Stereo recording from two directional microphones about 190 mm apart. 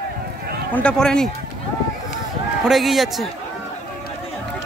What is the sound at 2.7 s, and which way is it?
Speech, centre (ahead or behind).